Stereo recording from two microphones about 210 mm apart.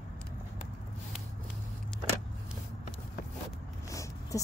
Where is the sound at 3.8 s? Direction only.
15° left (ahead or behind).